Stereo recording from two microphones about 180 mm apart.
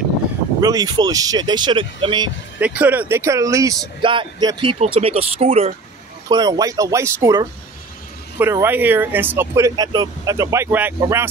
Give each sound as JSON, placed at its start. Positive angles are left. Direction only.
{"t": 0.6, "sound": "speech", "side_deg": -20}
{"t": 2.6, "sound": "speech", "side_deg": -10}
{"t": 6.2, "sound": "speech", "side_deg": -25}